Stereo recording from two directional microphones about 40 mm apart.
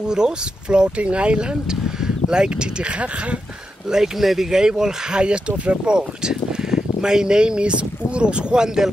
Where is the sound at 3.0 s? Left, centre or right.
Right.